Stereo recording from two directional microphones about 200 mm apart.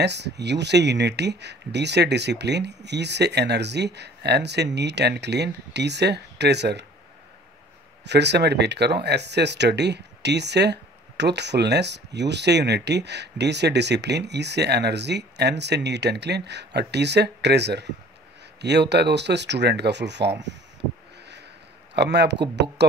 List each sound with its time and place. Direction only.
0.0 s speech: 55° right (ahead or behind)
8.0 s speech: 55° right (ahead or behind)
21.9 s speech: 55° right (ahead or behind)
22.8 s music: 60° right (ahead or behind)